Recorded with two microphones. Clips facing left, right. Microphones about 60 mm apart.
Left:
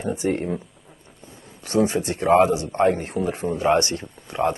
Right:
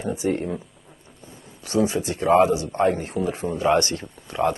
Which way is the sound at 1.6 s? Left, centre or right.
Left.